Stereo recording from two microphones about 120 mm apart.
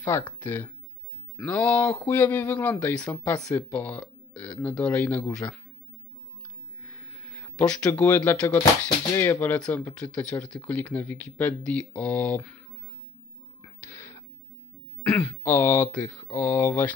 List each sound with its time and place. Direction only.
0.4 s speech: 20° left (ahead or behind)
6.8 s a sound: 15° left (ahead or behind)
8.8 s speech: 20° left (ahead or behind)
13.6 s music: 20° left (ahead or behind)
15.0 s speech: 5° left (ahead or behind)
15.4 s speech: 20° left (ahead or behind)